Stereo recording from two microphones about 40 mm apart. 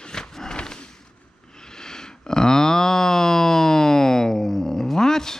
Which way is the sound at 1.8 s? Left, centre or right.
Centre.